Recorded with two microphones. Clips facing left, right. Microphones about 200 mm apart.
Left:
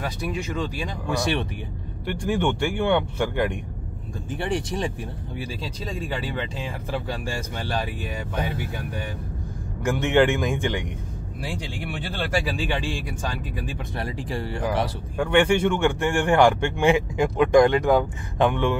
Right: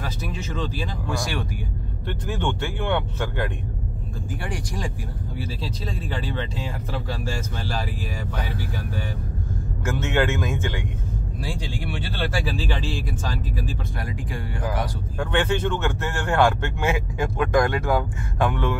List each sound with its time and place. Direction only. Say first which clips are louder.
0.2 s a man's voice: left 2 dB; 10° left (ahead or behind)
2.0 s a man's voice: left 4 dB; 10° left (ahead or behind)
4.3 s speech: left 6 dB; 25° left (ahead or behind)
5.9 s a man's voice: left 2 dB; 10° left (ahead or behind)
8.4 s speech: left 4 dB; 20° left (ahead or behind)
9.8 s a man's voice: left 4 dB; 15° left (ahead or behind)
13.9 s speech: left 2 dB; 30° left (ahead or behind)
15.1 s a man's voice: left 4 dB; 10° left (ahead or behind)